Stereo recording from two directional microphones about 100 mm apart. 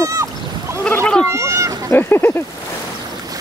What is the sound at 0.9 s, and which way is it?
Speech, 10° left (ahead or behind).